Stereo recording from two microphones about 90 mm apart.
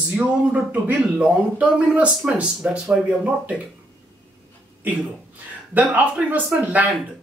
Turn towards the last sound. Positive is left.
turn(degrees=-15)  # may be behind; listen again after turning